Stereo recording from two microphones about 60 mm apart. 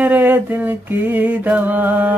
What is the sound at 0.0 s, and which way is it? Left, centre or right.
Speech, right.